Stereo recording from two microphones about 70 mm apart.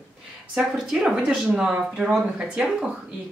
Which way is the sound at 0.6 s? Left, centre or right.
Centre.